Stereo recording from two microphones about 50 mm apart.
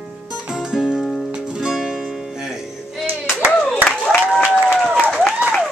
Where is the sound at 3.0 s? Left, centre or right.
Right.